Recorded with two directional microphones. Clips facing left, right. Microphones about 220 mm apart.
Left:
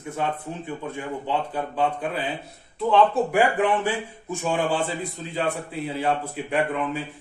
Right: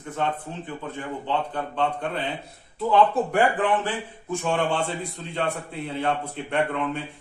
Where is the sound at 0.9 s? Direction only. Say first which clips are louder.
Even; 10° left (ahead or behind).